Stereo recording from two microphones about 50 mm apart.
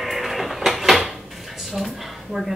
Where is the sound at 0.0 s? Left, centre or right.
Centre.